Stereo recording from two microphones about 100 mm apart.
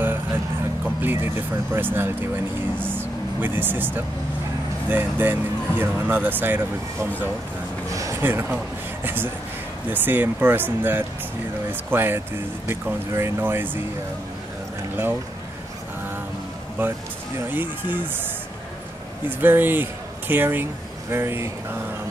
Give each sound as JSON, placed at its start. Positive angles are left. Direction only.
{"t": 1.0, "sound": "speech", "side_deg": -20}
{"t": 7.9, "sound": "a sound", "side_deg": -35}
{"t": 8.2, "sound": "a man's voice", "side_deg": -20}
{"t": 16.8, "sound": "speech", "side_deg": -20}
{"t": 19.2, "sound": "speech", "side_deg": -20}